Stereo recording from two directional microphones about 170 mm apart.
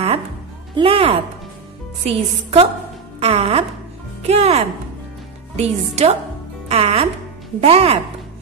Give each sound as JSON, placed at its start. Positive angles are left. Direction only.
{"t": 0.7, "sound": "a woman's voice", "side_deg": -35}